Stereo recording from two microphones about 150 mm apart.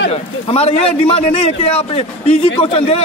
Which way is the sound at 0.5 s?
40° left (ahead or behind).